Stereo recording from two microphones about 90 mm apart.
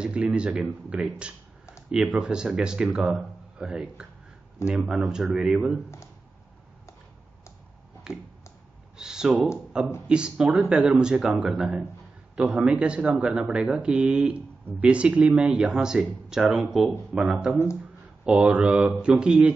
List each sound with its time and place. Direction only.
0.0 s a man's voice: 10° right (ahead or behind)
8.1 s a sound: 10° right (ahead or behind)
10.0 s a man's voice: 10° right (ahead or behind)